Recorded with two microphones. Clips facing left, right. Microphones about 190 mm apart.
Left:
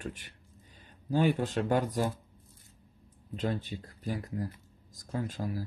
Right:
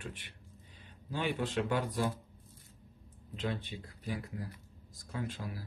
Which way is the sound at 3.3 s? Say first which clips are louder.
Left 4 dB; 40° left (ahead or behind).